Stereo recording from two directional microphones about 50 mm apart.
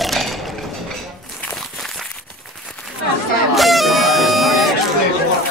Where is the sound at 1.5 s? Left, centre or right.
Centre.